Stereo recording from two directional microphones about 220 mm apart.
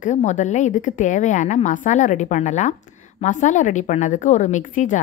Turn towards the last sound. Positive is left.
turn(degrees=35)  # may be behind; listen again after turning